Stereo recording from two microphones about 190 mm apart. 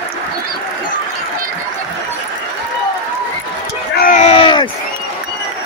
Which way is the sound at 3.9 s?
45° left (ahead or behind).